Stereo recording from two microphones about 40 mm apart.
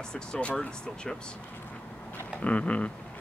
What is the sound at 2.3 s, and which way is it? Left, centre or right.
Speech, left.